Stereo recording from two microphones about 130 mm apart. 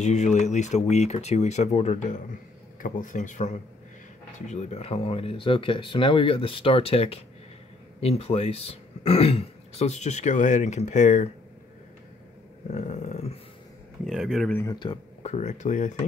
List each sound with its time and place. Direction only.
0.0 s speech: 65° left (ahead or behind)
12.6 s a sound: 60° left (ahead or behind)
14.0 s speech: 5° right (ahead or behind)
14.5 s speech: 20° left (ahead or behind)
15.2 s speech: 60° left (ahead or behind)